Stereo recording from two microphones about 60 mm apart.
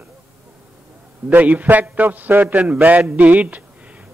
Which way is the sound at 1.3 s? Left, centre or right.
Right.